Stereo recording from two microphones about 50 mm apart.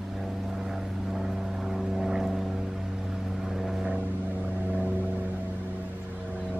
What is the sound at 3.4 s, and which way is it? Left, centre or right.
Vehicle, centre.